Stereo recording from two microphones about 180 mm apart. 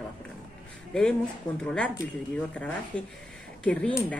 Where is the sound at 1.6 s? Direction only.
5° left (ahead or behind).